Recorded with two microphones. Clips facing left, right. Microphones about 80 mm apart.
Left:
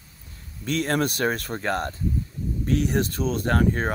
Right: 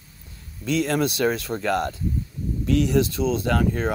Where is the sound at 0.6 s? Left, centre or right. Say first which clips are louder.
Right 2 dB; left.